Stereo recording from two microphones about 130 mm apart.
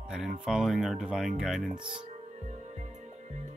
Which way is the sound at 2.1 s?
65° right (ahead or behind).